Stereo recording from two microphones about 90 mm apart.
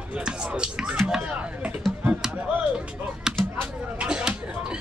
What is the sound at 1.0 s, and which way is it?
Chop, 10° right (ahead or behind).